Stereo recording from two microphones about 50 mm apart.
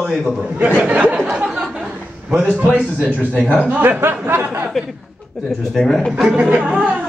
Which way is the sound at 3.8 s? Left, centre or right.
Right.